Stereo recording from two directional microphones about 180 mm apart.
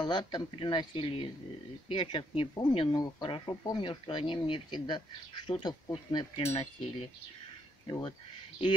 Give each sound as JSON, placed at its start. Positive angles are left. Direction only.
{"t": 0.0, "sound": "speech", "side_deg": 25}
{"t": 6.1, "sound": "wind chime", "side_deg": 30}
{"t": 7.8, "sound": "speech", "side_deg": 25}